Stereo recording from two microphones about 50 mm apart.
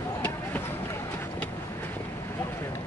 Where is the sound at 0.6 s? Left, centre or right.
Left.